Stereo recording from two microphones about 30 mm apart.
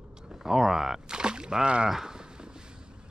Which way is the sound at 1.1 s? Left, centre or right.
Right.